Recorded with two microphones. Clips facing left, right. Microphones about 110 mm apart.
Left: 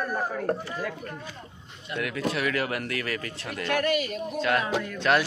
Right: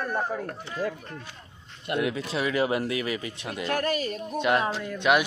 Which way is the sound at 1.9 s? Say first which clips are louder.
Right 5 dB; 60° right (ahead or behind).